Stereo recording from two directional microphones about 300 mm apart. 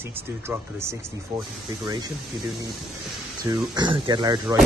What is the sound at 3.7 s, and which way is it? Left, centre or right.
Speech, centre.